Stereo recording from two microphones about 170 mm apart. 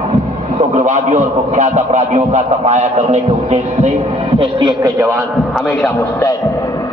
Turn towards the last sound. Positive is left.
turn(degrees=10)  # may be behind; listen again after turning